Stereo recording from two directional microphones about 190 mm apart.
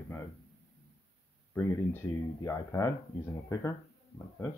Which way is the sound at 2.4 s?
15° left (ahead or behind).